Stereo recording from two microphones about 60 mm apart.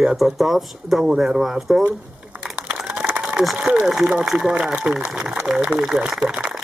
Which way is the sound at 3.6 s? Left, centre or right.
Centre.